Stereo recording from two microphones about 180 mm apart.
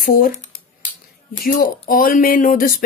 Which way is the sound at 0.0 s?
50° left (ahead or behind).